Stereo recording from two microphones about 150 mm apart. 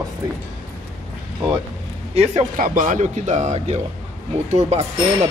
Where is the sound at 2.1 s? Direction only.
45° right (ahead or behind).